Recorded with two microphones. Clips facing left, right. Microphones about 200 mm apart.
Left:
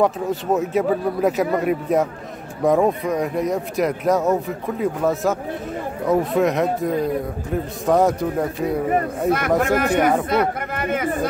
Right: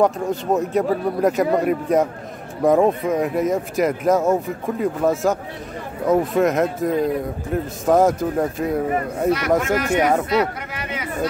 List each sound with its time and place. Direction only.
0.0 s speech: centre (ahead or behind)
9.8 s speech: 55° left (ahead or behind)